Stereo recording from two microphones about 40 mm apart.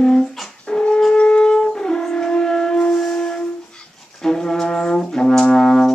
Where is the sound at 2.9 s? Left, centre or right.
Centre.